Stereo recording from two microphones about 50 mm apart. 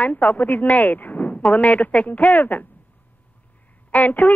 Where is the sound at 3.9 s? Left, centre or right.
Left.